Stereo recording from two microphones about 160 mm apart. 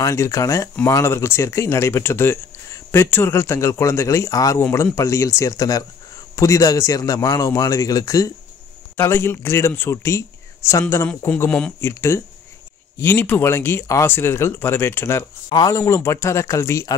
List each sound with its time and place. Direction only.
0.0 s a man's voice: 20° left (ahead or behind)